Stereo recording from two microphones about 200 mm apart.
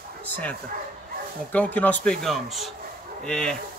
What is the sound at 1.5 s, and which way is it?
Speech, 5° left (ahead or behind).